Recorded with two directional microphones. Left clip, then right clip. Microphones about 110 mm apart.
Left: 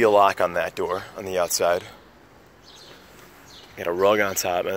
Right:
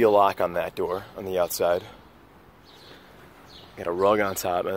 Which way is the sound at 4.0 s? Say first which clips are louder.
Left 2 dB; 15° right (ahead or behind).